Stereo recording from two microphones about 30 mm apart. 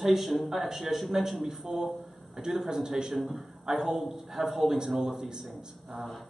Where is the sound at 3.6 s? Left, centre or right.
Centre.